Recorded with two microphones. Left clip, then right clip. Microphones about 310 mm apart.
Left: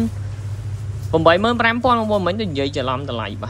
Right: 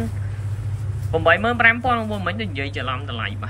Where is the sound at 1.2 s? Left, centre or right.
Centre.